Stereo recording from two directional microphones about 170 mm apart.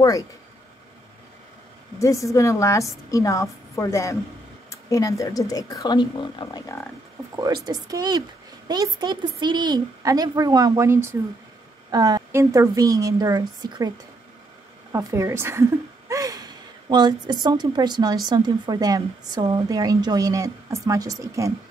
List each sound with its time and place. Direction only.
2.0 s a woman's voice: 20° left (ahead or behind)
7.3 s speech: 25° right (ahead or behind)